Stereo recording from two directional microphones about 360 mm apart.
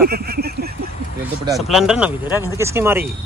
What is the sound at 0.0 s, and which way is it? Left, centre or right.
Speech, right.